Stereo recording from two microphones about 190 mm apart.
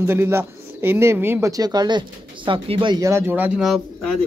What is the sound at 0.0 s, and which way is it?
Speech, 10° right (ahead or behind).